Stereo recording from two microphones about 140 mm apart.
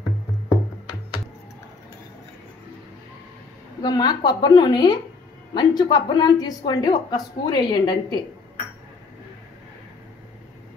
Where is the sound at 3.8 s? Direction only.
30° left (ahead or behind).